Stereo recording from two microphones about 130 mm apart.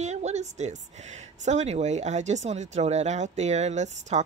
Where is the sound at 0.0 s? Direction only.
60° right (ahead or behind).